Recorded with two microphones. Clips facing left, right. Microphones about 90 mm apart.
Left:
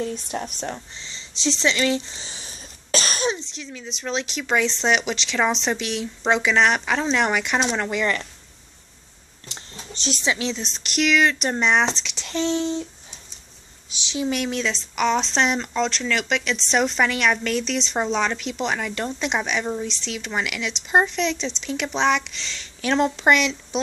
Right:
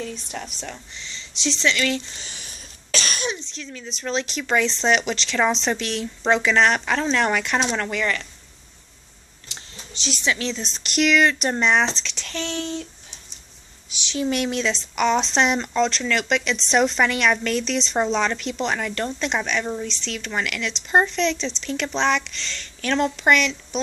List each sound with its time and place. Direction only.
0.3 s speech: 35° left (ahead or behind)
3.5 s speech: 10° left (ahead or behind)
9.5 s a sound: 40° left (ahead or behind)
10.2 s speech: 20° left (ahead or behind)
10.6 s speech: centre (ahead or behind)
12.1 s speech: 20° left (ahead or behind)
14.0 s speech: 15° left (ahead or behind)
14.3 s speech: centre (ahead or behind); by 23.8 s 20° left (ahead or behind)